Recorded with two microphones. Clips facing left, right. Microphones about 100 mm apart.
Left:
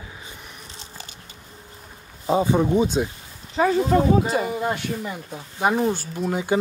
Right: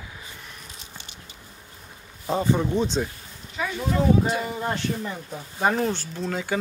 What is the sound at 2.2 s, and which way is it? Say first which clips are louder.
Speech: left 4 dB; 15° left (ahead or behind).